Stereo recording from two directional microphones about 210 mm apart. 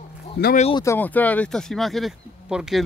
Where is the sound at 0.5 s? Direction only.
30° left (ahead or behind).